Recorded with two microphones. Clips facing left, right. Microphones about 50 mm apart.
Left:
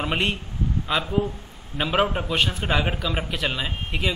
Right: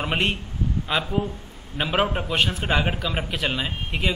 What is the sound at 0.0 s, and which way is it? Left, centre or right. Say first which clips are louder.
A man's voice: even; centre.